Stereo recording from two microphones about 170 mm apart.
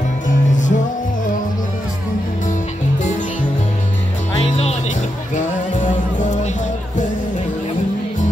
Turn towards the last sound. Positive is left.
turn(degrees=45)  # may be behind; listen again after turning